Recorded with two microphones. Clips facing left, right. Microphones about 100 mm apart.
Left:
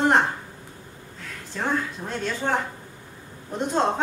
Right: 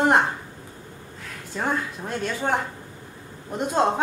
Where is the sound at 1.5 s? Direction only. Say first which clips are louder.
Even; 5° right (ahead or behind).